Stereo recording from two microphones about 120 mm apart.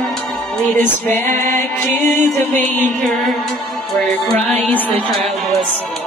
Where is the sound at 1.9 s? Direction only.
90° right.